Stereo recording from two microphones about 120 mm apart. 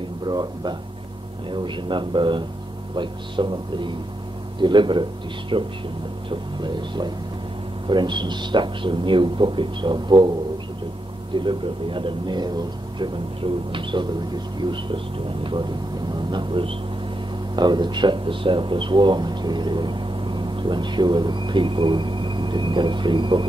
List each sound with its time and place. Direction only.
0.3 s speech: 35° right (ahead or behind)
11.3 s speech: 45° right (ahead or behind)
16.1 s speech: 40° right (ahead or behind)